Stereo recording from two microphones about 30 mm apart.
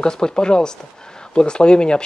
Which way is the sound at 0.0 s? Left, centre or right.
Left.